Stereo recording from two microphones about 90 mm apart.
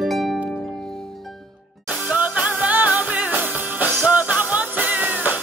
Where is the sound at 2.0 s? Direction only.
15° right (ahead or behind).